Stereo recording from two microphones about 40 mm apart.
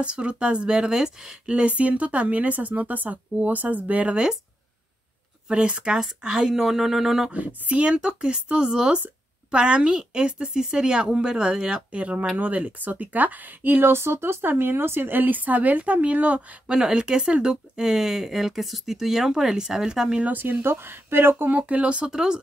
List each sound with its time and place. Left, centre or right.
0.0 s speech: right
5.5 s speech: right; by 7.2 s centre
7.2 s speech: right
11.9 s speech: right
14.6 s speech: right
16.6 s speech: centre
20.2 s speech: right
20.6 s speech: right
21.5 s speech: right
21.8 s speech: right